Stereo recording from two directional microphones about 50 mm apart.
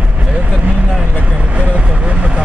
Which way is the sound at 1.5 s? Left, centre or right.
Right.